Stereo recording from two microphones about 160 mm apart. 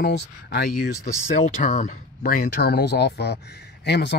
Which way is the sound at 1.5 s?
50° left (ahead or behind).